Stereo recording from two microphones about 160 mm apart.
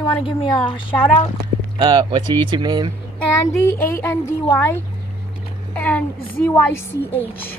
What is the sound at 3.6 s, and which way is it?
Speech, 15° left (ahead or behind).